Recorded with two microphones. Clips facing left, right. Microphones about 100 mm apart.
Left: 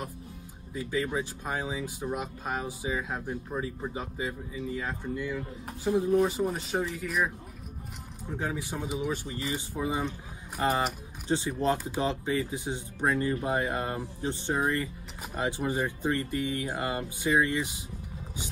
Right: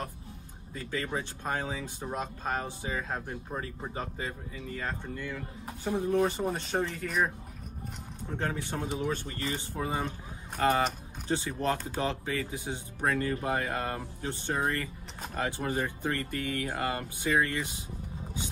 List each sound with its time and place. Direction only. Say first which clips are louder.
0.7 s speech: left 4 dB; 10° left (ahead or behind)
8.3 s speech: even; 10° left (ahead or behind)